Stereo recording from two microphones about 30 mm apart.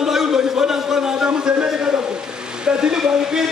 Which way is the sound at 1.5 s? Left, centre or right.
Right.